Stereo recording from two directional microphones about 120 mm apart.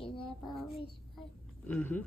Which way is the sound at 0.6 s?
Centre (ahead or behind).